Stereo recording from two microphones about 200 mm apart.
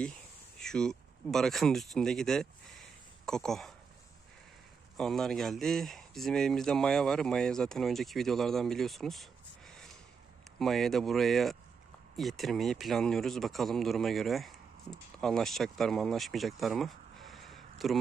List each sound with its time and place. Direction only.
0.6 s speech: 5° left (ahead or behind)
4.9 s speech: centre (ahead or behind)